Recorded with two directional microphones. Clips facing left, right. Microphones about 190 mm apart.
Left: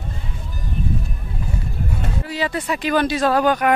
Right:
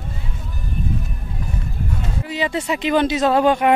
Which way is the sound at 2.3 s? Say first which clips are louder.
Right 2 dB; 20° right (ahead or behind).